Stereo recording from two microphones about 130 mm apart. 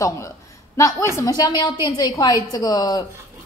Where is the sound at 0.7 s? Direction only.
25° left (ahead or behind).